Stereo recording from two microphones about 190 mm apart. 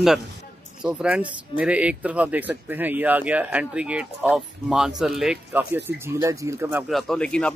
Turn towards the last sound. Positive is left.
turn(degrees=5)  # may be behind; listen again after turning